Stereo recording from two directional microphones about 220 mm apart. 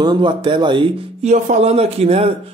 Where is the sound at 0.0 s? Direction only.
20° right (ahead or behind).